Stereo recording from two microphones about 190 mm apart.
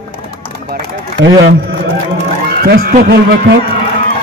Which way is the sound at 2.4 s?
55° right (ahead or behind).